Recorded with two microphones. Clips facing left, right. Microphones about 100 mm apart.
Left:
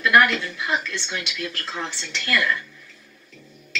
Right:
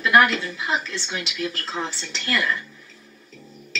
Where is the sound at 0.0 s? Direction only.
25° right (ahead or behind).